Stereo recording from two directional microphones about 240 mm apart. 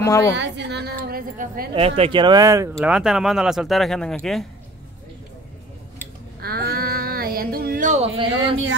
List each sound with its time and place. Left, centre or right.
0.0 s a woman's voice: centre
0.4 s a woman's voice: right
1.7 s speech: right; by 4.5 s centre
6.4 s a sound: right